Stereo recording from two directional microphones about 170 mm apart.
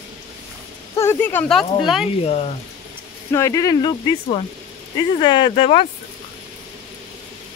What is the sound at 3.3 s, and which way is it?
Speech, 20° left (ahead or behind).